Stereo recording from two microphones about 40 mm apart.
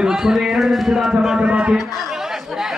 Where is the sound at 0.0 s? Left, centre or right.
Centre.